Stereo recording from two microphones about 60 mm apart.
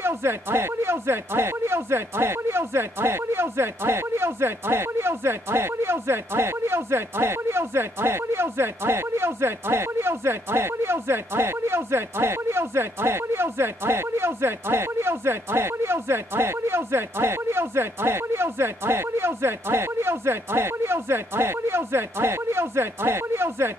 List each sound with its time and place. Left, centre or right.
0.0 s speech: right